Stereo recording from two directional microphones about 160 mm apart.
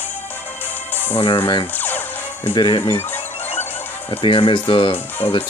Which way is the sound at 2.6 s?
30° left (ahead or behind).